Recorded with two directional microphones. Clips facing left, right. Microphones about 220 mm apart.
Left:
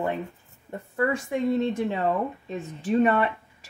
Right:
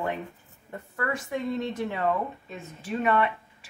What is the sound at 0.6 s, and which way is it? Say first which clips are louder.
A woman's voice: left 6 dB; 25° left (ahead or behind).